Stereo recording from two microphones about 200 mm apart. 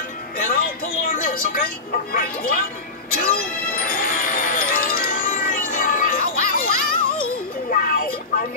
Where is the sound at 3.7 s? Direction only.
45° left (ahead or behind).